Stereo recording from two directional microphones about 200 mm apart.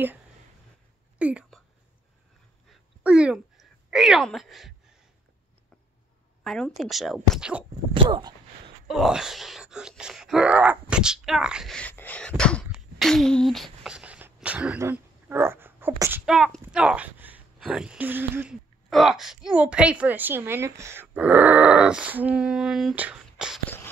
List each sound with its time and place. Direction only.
1.1 s a sound: 5° right (ahead or behind)
3.0 s speech: 5° right (ahead or behind)
6.4 s speech: centre (ahead or behind)
7.9 s speech: 25° right (ahead or behind)
8.8 s speech: centre (ahead or behind)
12.6 s a sound: centre (ahead or behind)